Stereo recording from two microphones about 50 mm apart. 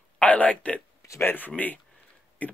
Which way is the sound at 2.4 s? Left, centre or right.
Left.